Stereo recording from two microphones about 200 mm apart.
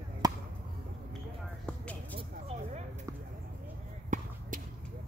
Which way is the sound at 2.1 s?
30° right (ahead or behind).